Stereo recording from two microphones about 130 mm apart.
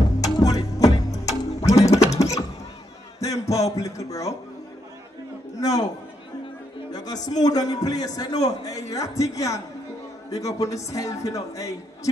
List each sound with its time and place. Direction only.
0.2 s music: 25° left (ahead or behind)
2.0 s a sound: 25° left (ahead or behind)
3.2 s music: 25° left (ahead or behind)
5.6 s a man's voice: 30° left (ahead or behind)
6.9 s a man's voice: 30° left (ahead or behind)